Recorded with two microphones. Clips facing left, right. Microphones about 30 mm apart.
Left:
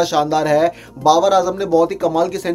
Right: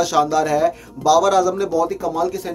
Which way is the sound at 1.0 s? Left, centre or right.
Left.